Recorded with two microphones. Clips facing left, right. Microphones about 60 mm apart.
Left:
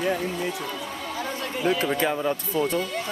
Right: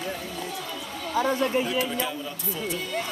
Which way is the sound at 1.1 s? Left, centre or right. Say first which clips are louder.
Right 9 dB; right.